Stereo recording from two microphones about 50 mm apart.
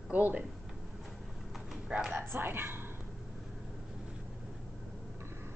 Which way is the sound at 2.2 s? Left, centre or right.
Right.